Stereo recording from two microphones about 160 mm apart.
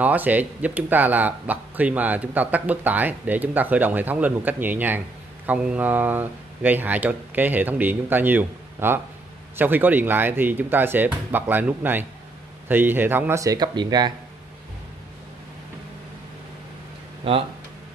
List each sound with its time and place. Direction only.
0.0 s speech: 10° right (ahead or behind); by 14.1 s 25° right (ahead or behind)
17.3 s speech: 35° right (ahead or behind)